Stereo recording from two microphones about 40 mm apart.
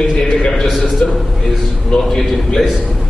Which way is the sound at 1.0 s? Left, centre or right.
Left.